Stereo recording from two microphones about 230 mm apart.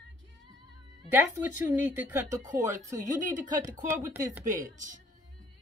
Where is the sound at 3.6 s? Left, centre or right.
Centre.